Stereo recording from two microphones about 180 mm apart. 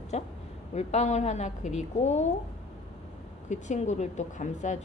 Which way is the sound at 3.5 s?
40° left (ahead or behind).